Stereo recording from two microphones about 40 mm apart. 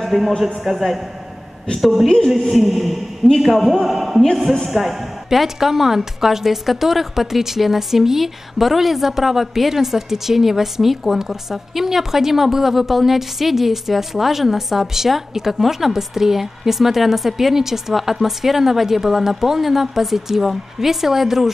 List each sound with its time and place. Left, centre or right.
0.0 s a woman's voice: centre
2.0 s speech: centre
2.5 s a woman's voice: centre
4.2 s speech: centre
4.6 s a woman's voice: centre